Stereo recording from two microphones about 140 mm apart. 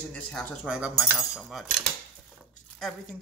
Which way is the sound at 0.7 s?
5° right (ahead or behind).